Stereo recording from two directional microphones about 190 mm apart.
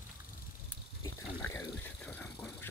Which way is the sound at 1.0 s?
15° left (ahead or behind).